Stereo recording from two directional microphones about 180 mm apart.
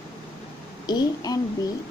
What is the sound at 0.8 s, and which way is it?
Speech, 20° left (ahead or behind).